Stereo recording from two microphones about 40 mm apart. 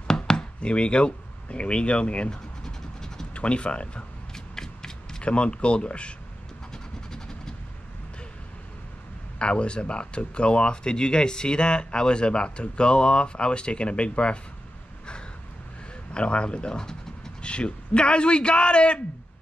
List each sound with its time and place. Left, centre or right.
0.1 s chopping: centre
0.6 s speech: left
2.3 s vehicle: centre
3.3 s speech: left
4.3 s shuffling cards: centre
5.2 s speech: left
6.7 s train: centre
9.4 s speech: left
16.1 s a sound: left
17.5 s speech: left